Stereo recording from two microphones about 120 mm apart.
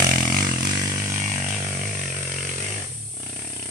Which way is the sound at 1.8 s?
5° right (ahead or behind).